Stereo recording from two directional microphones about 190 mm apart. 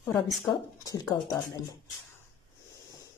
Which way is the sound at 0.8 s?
20° left (ahead or behind).